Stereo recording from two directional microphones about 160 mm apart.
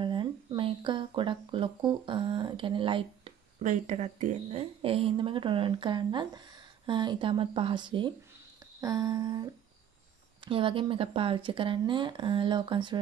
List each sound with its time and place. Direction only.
0.0 s speech: 30° right (ahead or behind)
3.6 s speech: 50° right (ahead or behind); by 8.1 s 30° right (ahead or behind)
8.8 s a sound: 25° right (ahead or behind)
10.4 s speech: 35° right (ahead or behind)